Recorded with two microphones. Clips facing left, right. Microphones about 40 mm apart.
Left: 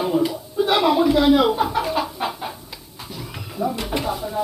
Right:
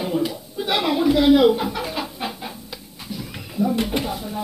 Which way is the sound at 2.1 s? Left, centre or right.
Centre.